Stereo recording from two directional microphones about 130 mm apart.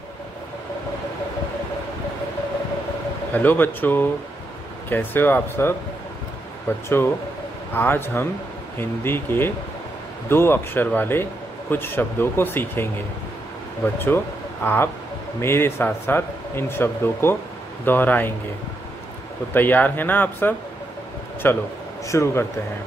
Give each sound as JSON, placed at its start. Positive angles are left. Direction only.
{"t": 3.3, "sound": "speech", "side_deg": 15}
{"t": 7.7, "sound": "speech", "side_deg": 15}
{"t": 13.9, "sound": "speech", "side_deg": 15}
{"t": 19.5, "sound": "a man's voice", "side_deg": 15}